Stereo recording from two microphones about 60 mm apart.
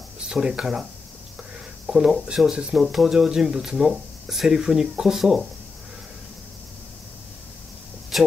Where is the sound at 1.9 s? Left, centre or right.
Centre.